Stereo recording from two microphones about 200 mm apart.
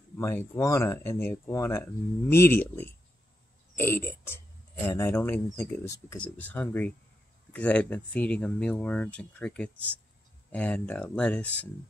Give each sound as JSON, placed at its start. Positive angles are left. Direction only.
{"t": 0.2, "sound": "speech", "side_deg": 15}